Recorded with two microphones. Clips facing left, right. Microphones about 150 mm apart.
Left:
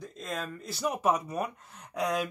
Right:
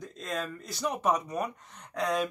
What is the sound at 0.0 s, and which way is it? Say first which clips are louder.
Speech: right 2 dB; centre (ahead or behind).